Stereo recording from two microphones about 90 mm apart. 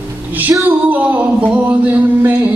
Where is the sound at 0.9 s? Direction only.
20° right (ahead or behind).